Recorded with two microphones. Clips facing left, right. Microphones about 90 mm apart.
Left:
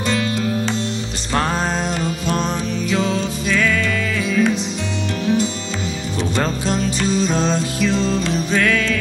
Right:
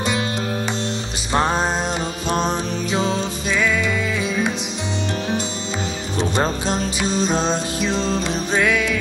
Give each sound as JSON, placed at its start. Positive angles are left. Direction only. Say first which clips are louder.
{"t": 0.0, "sound": "music", "louder": "left 2 dB", "side_deg": -15}
{"t": 1.3, "sound": "music", "louder": "right 1 dB", "side_deg": -20}
{"t": 3.5, "sound": "music", "louder": "left 1 dB", "side_deg": -15}
{"t": 5.2, "sound": "music", "louder": "left 5 dB", "side_deg": -30}
{"t": 8.5, "sound": "music", "louder": "even", "side_deg": -15}